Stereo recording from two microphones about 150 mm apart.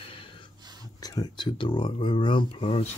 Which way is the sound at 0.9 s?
25° left (ahead or behind).